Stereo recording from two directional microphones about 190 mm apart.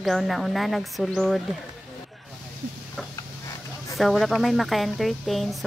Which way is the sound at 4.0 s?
Centre (ahead or behind).